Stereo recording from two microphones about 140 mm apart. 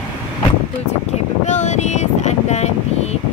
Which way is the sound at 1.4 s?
55° left (ahead or behind).